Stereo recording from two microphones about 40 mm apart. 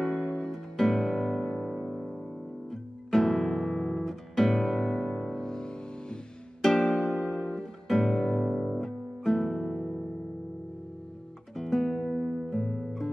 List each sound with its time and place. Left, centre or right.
0.0 s music: centre
0.7 s music: centre
5.3 s music: centre
6.6 s music: centre
11.5 s music: centre